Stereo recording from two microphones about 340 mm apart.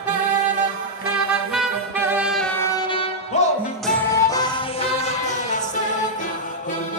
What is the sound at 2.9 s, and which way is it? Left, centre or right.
Music, centre.